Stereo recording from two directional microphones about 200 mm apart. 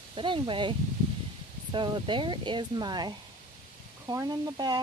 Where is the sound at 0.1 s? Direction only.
25° right (ahead or behind).